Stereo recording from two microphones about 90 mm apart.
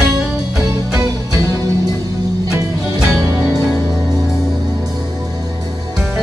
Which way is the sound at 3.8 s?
45° right (ahead or behind).